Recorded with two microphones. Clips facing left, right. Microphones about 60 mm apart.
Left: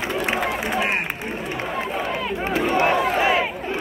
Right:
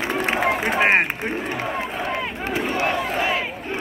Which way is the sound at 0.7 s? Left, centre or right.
Right.